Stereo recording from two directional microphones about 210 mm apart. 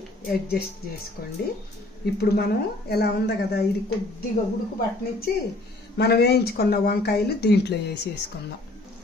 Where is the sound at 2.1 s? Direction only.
50° left (ahead or behind).